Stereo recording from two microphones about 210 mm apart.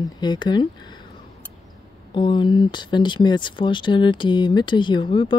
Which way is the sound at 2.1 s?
20° left (ahead or behind).